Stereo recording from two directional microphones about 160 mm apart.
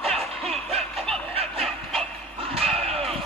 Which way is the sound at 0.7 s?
40° right (ahead or behind).